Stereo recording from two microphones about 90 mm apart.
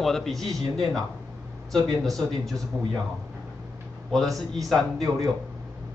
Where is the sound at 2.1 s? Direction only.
5° left (ahead or behind).